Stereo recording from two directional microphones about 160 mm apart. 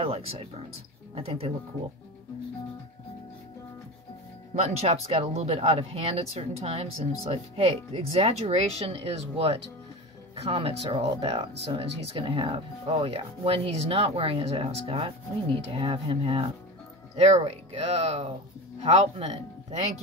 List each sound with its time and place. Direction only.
0.0 s speech: 35° right (ahead or behind)
4.6 s speech: 45° right (ahead or behind)
11.1 s speech: 30° right (ahead or behind)